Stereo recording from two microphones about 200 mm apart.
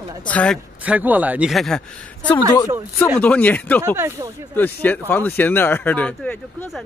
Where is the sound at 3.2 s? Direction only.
10° left (ahead or behind).